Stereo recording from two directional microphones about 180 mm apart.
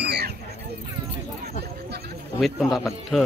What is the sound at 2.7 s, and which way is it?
Speech, centre (ahead or behind).